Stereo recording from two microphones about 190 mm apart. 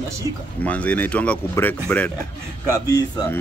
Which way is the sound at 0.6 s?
5° left (ahead or behind).